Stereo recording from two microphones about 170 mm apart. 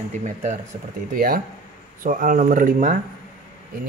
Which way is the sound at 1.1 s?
55° right (ahead or behind).